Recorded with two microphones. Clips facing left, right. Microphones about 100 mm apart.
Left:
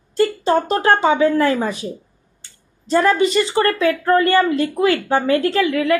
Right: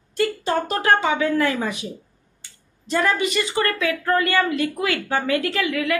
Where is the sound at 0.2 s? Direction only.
30° left (ahead or behind).